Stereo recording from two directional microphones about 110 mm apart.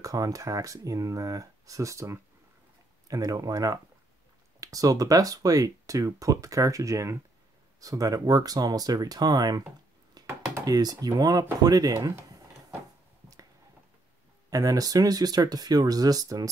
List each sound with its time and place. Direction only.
0.0 s speech: 30° right (ahead or behind)
14.5 s speech: 35° right (ahead or behind)